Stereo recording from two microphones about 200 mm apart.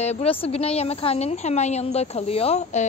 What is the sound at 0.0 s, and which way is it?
A woman's voice, 30° left (ahead or behind).